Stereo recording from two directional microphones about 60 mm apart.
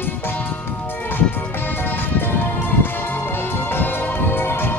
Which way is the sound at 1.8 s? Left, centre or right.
Left.